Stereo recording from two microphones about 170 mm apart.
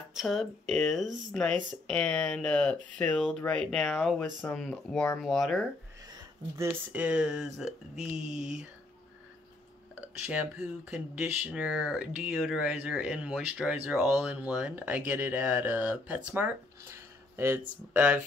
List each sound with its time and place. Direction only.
0.1 s speech: centre (ahead or behind)
6.5 s speech: 15° right (ahead or behind)
8.2 s a sound: 45° right (ahead or behind)
9.9 s speech: 10° right (ahead or behind)